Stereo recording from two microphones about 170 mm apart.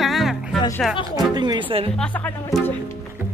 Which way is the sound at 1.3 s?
25° right (ahead or behind).